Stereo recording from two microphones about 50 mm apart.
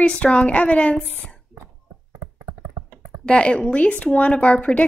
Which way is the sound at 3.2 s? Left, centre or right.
Left.